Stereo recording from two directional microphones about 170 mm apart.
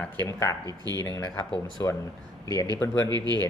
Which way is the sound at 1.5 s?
20° left (ahead or behind).